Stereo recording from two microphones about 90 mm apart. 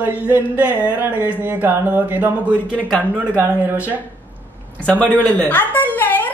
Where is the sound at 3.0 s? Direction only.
15° right (ahead or behind).